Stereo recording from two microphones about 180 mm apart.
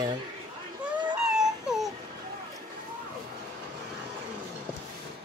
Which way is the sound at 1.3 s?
Centre (ahead or behind).